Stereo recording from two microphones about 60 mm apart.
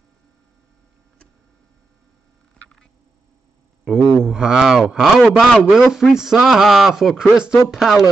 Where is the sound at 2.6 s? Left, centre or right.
Centre.